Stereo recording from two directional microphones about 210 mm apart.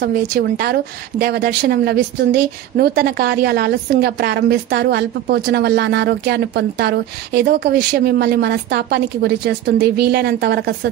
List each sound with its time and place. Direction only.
0.0 s a woman's voice: 50° right (ahead or behind)